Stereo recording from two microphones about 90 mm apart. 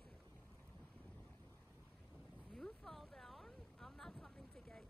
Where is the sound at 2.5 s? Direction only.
5° left (ahead or behind).